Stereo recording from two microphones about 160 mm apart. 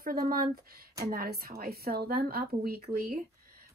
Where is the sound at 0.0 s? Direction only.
65° right (ahead or behind).